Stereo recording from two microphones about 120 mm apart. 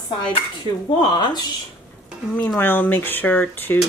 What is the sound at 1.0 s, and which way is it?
Speech, 35° left (ahead or behind).